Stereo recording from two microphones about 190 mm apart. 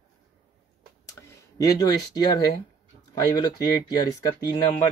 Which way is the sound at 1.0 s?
15° left (ahead or behind).